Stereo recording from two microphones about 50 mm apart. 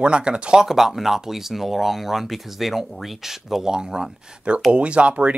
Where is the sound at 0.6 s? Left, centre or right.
Centre; by 5.4 s right.